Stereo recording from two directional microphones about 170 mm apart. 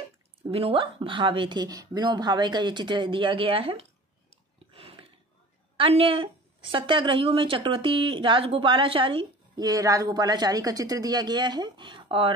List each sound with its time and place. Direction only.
0.4 s a woman's voice: 35° right (ahead or behind)
4.7 s a sound: 35° right (ahead or behind)
5.8 s a woman's voice: 30° right (ahead or behind)